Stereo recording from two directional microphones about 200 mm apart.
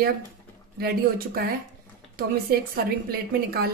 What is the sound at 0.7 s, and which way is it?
A woman's voice, 50° right (ahead or behind).